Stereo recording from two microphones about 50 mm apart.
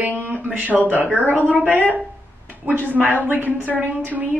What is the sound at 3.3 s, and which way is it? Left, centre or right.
Speech, right.